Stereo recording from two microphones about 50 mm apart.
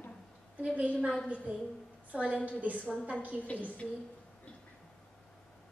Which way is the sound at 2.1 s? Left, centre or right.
Right.